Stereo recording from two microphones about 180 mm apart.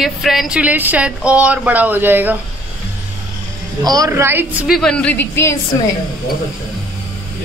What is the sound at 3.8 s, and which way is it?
Speech, 20° right (ahead or behind).